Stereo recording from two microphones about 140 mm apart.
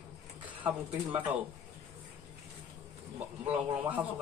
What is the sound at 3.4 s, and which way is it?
Speech, 10° right (ahead or behind).